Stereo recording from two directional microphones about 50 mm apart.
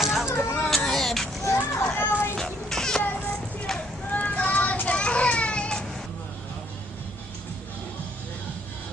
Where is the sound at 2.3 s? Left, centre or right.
Centre.